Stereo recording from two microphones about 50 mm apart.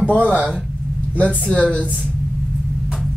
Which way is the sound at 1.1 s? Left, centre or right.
Left.